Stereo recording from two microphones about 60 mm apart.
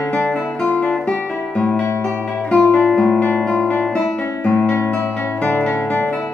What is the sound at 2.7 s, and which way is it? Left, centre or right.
Guitar, centre.